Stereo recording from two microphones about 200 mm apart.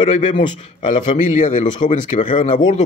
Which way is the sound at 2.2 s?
25° left (ahead or behind).